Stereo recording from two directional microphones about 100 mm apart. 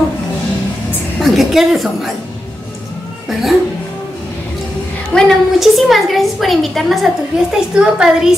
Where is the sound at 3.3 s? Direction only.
Centre (ahead or behind).